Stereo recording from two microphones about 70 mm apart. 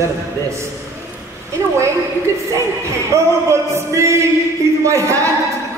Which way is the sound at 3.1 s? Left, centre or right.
Right.